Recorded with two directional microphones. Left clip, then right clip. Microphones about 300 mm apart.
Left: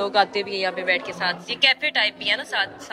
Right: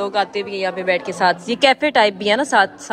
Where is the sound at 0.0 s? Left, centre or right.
Centre.